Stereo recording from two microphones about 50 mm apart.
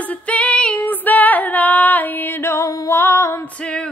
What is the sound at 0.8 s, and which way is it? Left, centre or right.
Female singing, left.